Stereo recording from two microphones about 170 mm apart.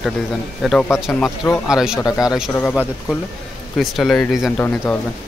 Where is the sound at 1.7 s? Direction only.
5° right (ahead or behind).